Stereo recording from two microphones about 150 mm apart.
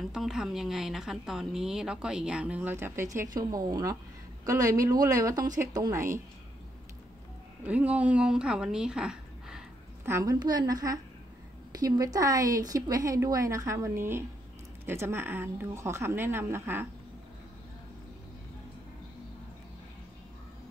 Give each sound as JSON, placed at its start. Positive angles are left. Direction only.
{"t": 0.0, "sound": "speech", "side_deg": 0}
{"t": 7.6, "sound": "speech", "side_deg": -10}
{"t": 10.0, "sound": "speech", "side_deg": -20}